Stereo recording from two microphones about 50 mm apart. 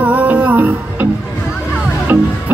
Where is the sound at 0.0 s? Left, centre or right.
Right.